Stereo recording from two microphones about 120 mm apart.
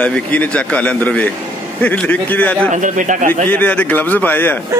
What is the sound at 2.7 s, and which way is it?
Speech, 90° right.